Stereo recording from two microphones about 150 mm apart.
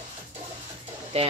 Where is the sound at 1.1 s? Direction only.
40° right (ahead or behind).